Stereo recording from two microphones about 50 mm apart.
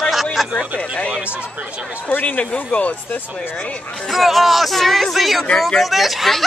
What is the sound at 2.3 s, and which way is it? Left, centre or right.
Speech, left.